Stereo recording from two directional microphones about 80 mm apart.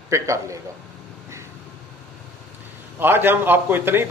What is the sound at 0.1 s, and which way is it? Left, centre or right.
Speech, right.